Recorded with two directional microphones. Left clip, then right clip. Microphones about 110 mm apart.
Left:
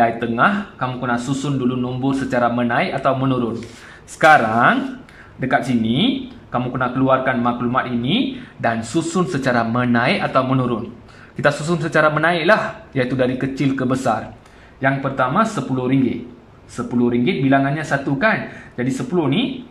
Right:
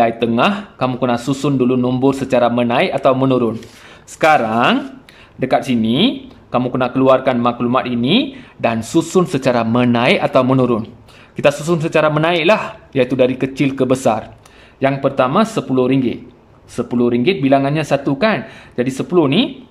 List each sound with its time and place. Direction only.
0.3 s speech: 35° right (ahead or behind)
1.0 s a man's voice: 45° right (ahead or behind)
2.2 s a man's voice: 30° right (ahead or behind)
4.2 s a man's voice: 15° right (ahead or behind)
6.6 s speech: 35° right (ahead or behind)
9.4 s a man's voice: 20° right (ahead or behind)
10.2 s speech: 40° right (ahead or behind)
11.4 s a man's voice: 25° right (ahead or behind)